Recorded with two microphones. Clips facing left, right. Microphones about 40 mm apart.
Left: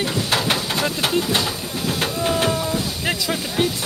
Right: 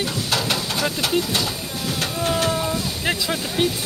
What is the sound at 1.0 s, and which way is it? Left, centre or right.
Bird, left.